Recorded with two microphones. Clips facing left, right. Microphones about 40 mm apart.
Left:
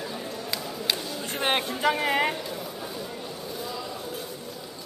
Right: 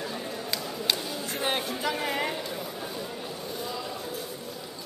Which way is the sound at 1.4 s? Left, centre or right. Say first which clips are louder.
Left 5 dB; left.